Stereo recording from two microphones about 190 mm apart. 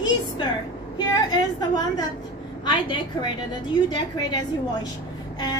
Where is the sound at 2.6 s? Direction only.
25° left (ahead or behind).